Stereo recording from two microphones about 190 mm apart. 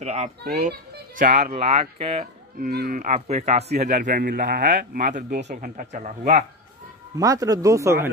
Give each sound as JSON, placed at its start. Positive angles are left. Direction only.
{"t": 0.0, "sound": "speech", "side_deg": -35}
{"t": 2.6, "sound": "a man's voice", "side_deg": -50}
{"t": 7.2, "sound": "speech", "side_deg": -20}